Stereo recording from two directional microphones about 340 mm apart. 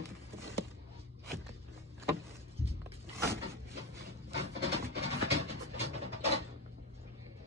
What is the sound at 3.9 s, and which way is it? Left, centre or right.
Wood, centre.